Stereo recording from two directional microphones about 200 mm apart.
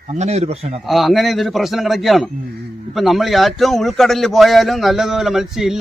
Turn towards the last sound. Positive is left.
turn(degrees=0)  # may be behind; listen again after turning